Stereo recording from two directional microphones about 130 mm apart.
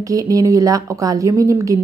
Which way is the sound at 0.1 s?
25° right (ahead or behind).